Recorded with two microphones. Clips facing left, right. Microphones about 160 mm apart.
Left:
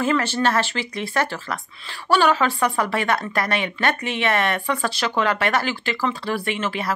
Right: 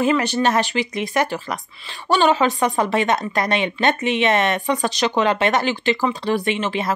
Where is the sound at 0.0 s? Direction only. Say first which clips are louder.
Right 2 dB; 15° right (ahead or behind).